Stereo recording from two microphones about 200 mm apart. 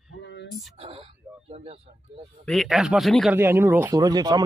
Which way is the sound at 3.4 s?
10° right (ahead or behind).